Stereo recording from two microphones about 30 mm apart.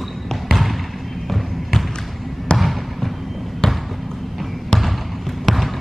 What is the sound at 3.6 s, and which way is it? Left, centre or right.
Basketball bounce, centre.